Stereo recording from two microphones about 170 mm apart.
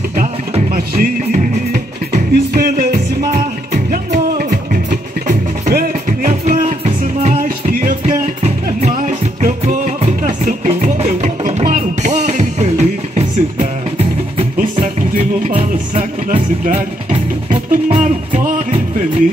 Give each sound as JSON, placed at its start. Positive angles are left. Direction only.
{"t": 0.7, "sound": "music", "side_deg": -55}
{"t": 5.7, "sound": "music", "side_deg": -55}
{"t": 15.4, "sound": "music", "side_deg": -40}
{"t": 17.5, "sound": "music", "side_deg": -45}